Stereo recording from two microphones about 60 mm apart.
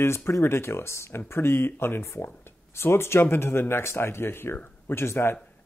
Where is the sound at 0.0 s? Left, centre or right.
Left.